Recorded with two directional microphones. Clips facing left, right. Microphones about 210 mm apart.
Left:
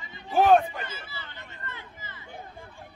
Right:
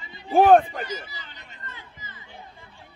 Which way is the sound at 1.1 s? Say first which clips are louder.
Left 2 dB; 15° right (ahead or behind).